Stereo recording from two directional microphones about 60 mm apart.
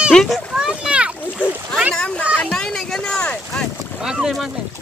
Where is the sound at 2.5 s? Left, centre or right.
Centre.